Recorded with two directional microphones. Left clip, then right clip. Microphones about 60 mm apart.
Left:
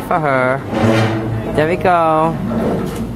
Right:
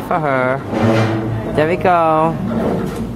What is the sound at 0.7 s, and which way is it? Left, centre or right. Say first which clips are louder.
Speech: even; left.